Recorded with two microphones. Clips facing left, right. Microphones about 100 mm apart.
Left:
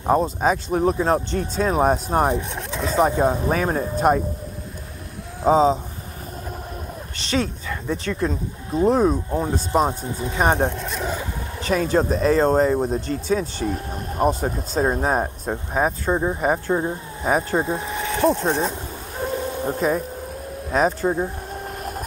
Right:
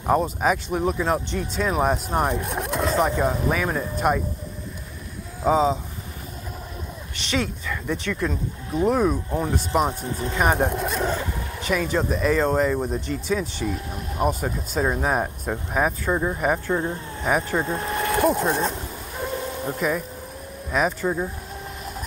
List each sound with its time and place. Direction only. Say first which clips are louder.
0.0 s speech: left 2 dB; 25° left (ahead or behind)
2.3 s speech: right 1 dB; 5° right (ahead or behind)
3.1 s speech: left 3 dB; 25° left (ahead or behind)
5.4 s speech: left 3 dB; 30° left (ahead or behind)
7.2 s speech: left 2 dB; 35° left (ahead or behind)
10.6 s speech: right 1 dB; 5° right (ahead or behind)
11.6 s speech: left 4 dB; 35° left (ahead or behind)
17.6 s speech: right 1 dB; centre (ahead or behind)
19.6 s speech: left 3 dB; 30° left (ahead or behind)
21.6 s vehicle: left 4 dB; 50° left (ahead or behind)